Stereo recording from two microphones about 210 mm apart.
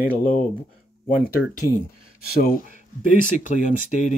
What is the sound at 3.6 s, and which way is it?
Speech, 35° left (ahead or behind).